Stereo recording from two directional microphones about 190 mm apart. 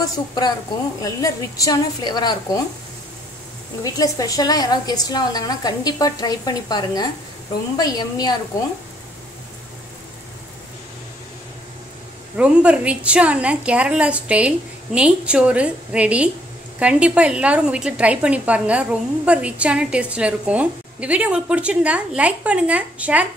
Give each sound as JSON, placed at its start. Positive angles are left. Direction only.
{"t": 0.0, "sound": "a woman's voice", "side_deg": 20}
{"t": 3.8, "sound": "a woman's voice", "side_deg": 20}
{"t": 12.4, "sound": "a woman's voice", "side_deg": -5}